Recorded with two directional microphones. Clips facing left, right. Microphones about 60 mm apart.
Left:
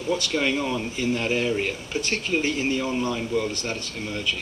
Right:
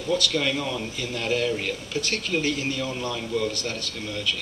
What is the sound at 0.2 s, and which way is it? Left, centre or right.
Speech, left.